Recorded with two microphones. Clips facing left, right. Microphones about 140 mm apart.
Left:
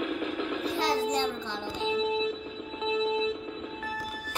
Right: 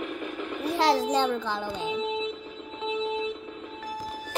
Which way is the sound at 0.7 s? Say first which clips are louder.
Right 5 dB; 75° right (ahead or behind).